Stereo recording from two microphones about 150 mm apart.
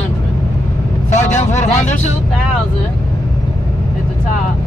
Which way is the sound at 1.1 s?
50° left (ahead or behind).